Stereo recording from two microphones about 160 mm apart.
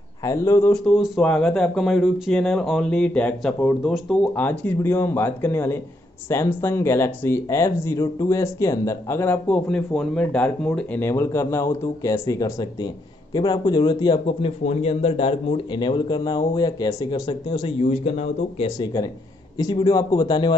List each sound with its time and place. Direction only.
0.2 s speech: 20° left (ahead or behind)
0.8 s speech: centre (ahead or behind)
4.4 s speech: 10° left (ahead or behind); by 18.7 s 45° left (ahead or behind)
19.6 s speech: 25° left (ahead or behind)